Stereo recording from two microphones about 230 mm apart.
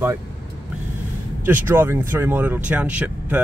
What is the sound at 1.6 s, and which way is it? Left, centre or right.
Speech, centre.